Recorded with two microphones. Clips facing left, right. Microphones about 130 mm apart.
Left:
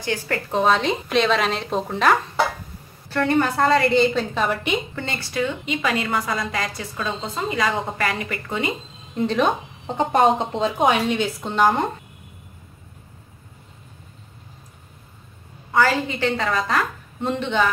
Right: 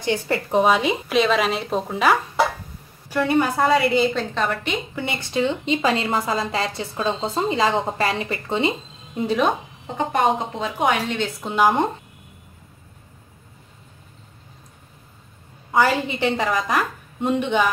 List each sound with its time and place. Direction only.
0.0 s a woman's voice: 20° right (ahead or behind); by 4.7 s 10° left (ahead or behind)
4.9 s a woman's voice: 15° right (ahead or behind)
9.1 s a woman's voice: 10° right (ahead or behind)
9.9 s speech: 30° left (ahead or behind)
11.4 s a woman's voice: 5° right (ahead or behind)
15.7 s a woman's voice: 20° right (ahead or behind)